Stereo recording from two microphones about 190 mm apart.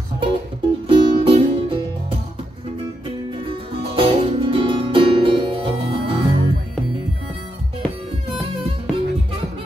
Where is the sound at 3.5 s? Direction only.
30° right (ahead or behind).